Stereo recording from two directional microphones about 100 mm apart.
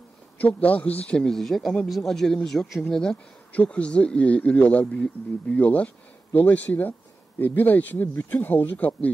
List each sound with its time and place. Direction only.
0.4 s speech: 15° left (ahead or behind)